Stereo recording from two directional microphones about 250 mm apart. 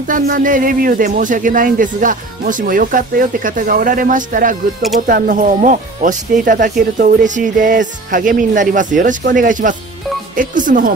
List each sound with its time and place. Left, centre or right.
0.1 s speech: right